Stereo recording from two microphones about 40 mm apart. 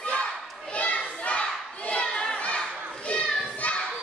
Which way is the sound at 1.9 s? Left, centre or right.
Left.